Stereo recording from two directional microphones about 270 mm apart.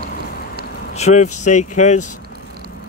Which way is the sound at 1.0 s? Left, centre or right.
Left.